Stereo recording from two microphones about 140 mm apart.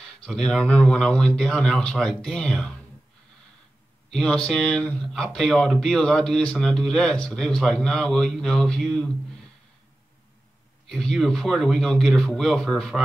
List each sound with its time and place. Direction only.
0.2 s speech: 5° left (ahead or behind)
4.1 s speech: 5° left (ahead or behind)
10.9 s speech: centre (ahead or behind)